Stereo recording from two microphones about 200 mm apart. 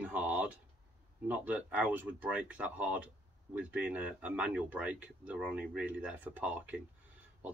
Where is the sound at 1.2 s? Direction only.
5° right (ahead or behind).